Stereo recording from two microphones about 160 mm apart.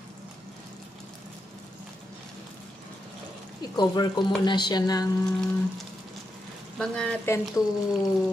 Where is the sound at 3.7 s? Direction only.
25° left (ahead or behind).